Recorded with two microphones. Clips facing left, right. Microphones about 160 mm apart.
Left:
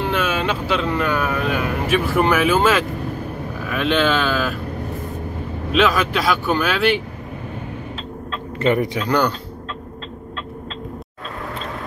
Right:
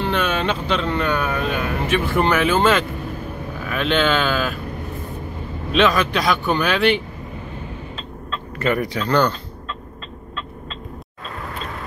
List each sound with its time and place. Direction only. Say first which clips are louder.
0.0 s speech: even; 5° left (ahead or behind)
5.7 s speech: even; 5° left (ahead or behind)
8.5 s speech: left 3 dB; 25° left (ahead or behind)